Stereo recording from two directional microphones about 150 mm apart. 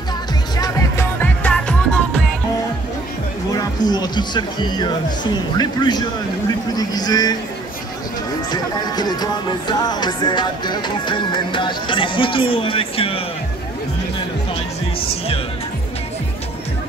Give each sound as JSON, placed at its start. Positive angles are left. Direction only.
{"t": 0.6, "sound": "music", "side_deg": 20}
{"t": 3.5, "sound": "speech", "side_deg": 25}
{"t": 8.5, "sound": "music", "side_deg": 30}
{"t": 15.0, "sound": "music", "side_deg": 40}